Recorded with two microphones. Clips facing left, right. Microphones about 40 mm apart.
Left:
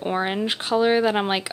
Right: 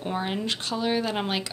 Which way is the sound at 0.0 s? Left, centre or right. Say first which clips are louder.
Left 5 dB; left.